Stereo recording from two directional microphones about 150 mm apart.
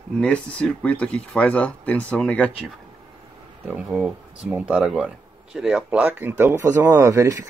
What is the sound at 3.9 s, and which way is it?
Speech, 5° right (ahead or behind).